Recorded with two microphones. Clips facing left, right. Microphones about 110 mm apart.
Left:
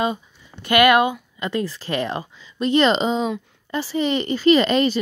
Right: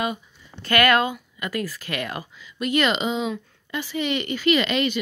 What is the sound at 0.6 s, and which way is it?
Speech, 20° left (ahead or behind).